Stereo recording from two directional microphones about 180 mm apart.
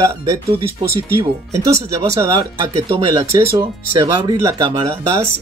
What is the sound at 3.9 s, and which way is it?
Speech, 20° right (ahead or behind).